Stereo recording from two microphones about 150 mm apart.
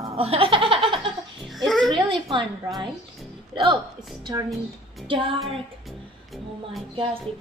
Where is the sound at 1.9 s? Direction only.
30° right (ahead or behind).